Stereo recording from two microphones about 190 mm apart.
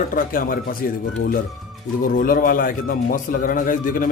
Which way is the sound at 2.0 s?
50° left (ahead or behind).